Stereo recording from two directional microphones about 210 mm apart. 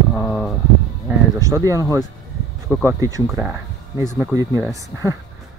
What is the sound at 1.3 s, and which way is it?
Speech, 15° right (ahead or behind).